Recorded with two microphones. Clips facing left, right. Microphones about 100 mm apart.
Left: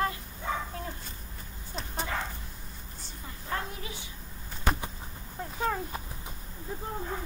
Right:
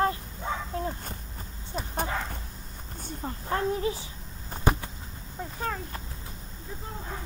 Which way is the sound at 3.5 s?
35° right (ahead or behind).